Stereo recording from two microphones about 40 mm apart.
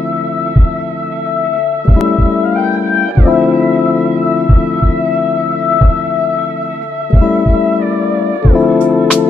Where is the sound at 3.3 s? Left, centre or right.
Right.